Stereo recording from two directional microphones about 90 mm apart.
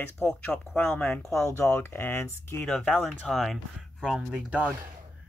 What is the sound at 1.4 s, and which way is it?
Speech, 30° left (ahead or behind).